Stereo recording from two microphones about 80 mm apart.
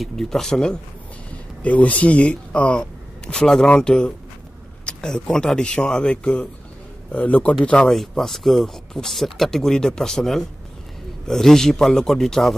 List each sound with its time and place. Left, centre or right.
0.0 s a man's voice: centre
7.9 s speech: centre